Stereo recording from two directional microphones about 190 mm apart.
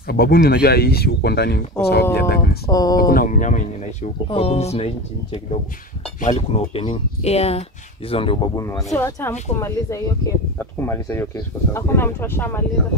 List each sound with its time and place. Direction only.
0.0 s speech: 55° left (ahead or behind)
2.7 s speech: 20° left (ahead or behind)
3.0 s speech: 50° left (ahead or behind); by 8.5 s 30° left (ahead or behind)
8.5 s speech: 15° left (ahead or behind)